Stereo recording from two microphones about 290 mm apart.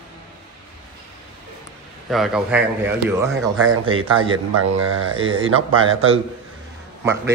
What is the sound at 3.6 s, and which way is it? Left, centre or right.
A man's voice, right.